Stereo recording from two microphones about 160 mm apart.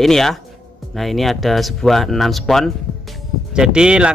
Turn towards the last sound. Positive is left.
turn(degrees=-5)  # may be behind; listen again after turning